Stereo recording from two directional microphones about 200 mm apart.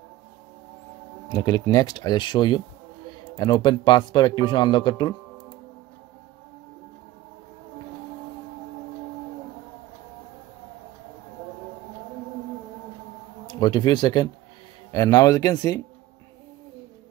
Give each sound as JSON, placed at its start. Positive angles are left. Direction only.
{"t": 1.3, "sound": "speech", "side_deg": 20}
{"t": 3.1, "sound": "a sound", "side_deg": 20}
{"t": 3.8, "sound": "speech", "side_deg": 20}
{"t": 13.5, "sound": "speech", "side_deg": 20}